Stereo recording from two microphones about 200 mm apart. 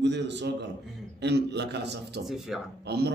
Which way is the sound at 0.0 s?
60° right (ahead or behind).